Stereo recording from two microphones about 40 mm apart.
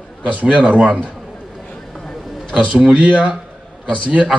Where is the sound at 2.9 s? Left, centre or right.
Right.